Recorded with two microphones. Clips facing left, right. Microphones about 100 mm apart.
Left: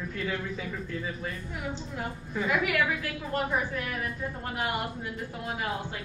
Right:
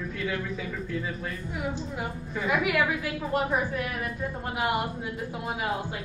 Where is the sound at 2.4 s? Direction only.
10° right (ahead or behind).